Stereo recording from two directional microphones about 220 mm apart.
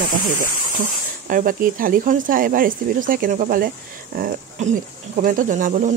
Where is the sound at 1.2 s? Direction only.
40° right (ahead or behind).